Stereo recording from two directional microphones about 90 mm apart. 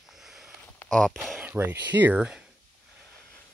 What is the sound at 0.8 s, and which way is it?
Speech, 5° left (ahead or behind).